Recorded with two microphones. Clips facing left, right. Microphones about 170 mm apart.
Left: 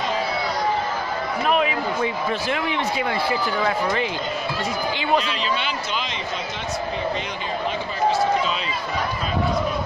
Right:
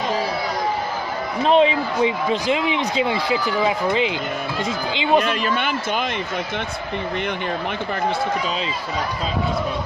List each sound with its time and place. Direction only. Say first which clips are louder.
1.4 s a man's voice: right 6 dB; 30° right (ahead or behind)
2.0 s a man's voice: right 4 dB; 15° right (ahead or behind)
5.2 s a man's voice: right 4 dB; 50° right (ahead or behind)